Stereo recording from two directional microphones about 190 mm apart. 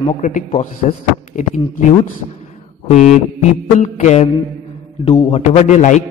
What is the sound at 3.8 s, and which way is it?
A man's voice, 40° left (ahead or behind).